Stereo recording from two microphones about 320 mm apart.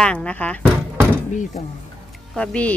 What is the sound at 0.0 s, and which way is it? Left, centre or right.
Speech, centre.